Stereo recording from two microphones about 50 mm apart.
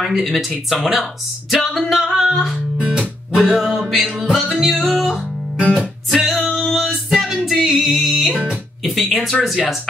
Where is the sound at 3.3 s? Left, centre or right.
Centre.